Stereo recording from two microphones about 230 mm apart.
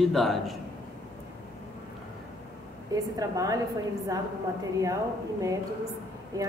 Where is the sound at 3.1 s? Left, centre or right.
Centre.